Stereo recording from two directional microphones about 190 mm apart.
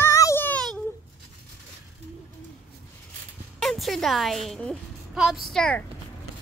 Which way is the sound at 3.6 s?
Centre (ahead or behind).